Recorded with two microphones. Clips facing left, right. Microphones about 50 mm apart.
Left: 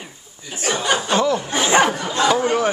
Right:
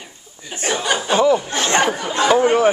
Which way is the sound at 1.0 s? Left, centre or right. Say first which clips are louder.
Right 7 dB; centre.